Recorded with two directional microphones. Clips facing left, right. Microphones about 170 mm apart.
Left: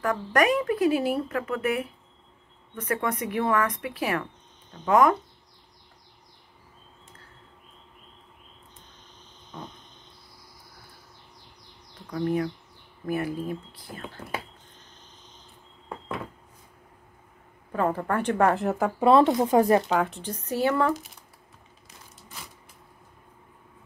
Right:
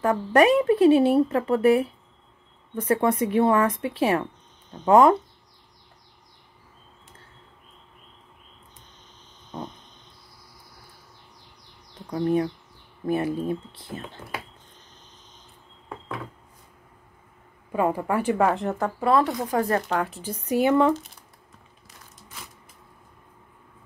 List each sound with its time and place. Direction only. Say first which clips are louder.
0.0 s speech: right 5 dB; 25° right (ahead or behind)
12.1 s speech: right 3 dB; 25° right (ahead or behind)
17.7 s a woman's voice: right 2 dB; 10° right (ahead or behind)
18.9 s speech: left 4 dB; 20° left (ahead or behind)
19.9 s speech: left 1 dB; centre (ahead or behind); by 20.9 s 20° right (ahead or behind)